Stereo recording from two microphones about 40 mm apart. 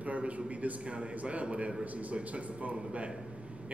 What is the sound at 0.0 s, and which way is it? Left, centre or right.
Speech, right.